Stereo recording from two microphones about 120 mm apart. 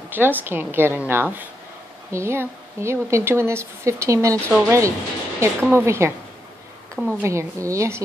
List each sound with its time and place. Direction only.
0.1 s a woman's voice: 15° right (ahead or behind)